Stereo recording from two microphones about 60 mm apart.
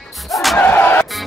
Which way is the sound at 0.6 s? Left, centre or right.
Left.